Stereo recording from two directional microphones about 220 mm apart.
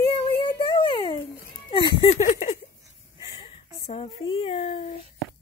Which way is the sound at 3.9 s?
25° left (ahead or behind).